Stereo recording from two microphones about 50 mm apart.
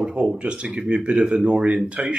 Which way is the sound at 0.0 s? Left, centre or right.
Centre.